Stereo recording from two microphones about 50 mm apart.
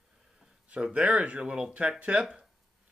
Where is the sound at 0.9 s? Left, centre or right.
Right.